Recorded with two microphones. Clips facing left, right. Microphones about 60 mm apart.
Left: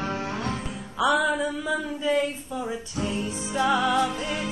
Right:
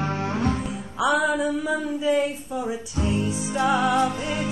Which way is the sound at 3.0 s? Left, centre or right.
Right.